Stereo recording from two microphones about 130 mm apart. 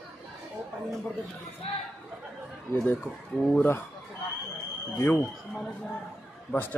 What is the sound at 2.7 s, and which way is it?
Speech, 15° left (ahead or behind).